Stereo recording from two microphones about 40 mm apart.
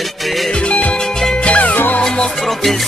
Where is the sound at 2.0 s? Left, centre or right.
Centre.